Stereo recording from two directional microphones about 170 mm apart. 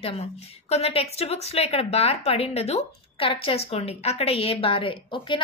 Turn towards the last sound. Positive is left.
turn(degrees=30)  # may be behind; listen again after turning